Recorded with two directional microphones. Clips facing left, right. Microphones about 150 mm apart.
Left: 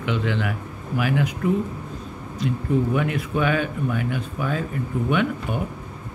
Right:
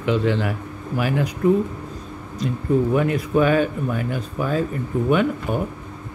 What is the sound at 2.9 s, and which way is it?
Speech, 35° right (ahead or behind).